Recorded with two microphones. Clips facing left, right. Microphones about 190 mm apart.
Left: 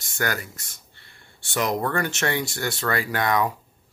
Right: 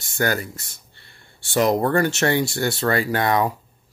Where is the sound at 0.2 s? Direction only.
30° right (ahead or behind).